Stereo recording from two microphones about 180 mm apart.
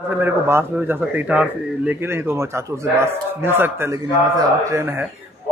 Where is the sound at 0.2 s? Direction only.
10° right (ahead or behind).